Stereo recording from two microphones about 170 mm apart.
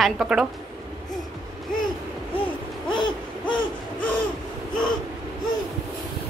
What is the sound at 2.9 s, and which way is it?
Hoot, 30° left (ahead or behind).